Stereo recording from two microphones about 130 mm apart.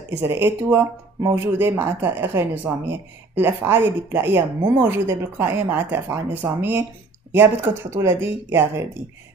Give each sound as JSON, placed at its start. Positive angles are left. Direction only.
{"t": 0.2, "sound": "speech", "side_deg": -15}